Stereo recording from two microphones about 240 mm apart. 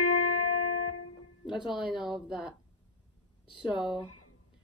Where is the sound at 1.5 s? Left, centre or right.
Centre.